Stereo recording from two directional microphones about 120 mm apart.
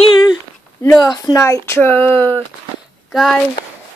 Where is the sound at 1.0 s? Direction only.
35° left (ahead or behind); by 2.4 s 20° left (ahead or behind).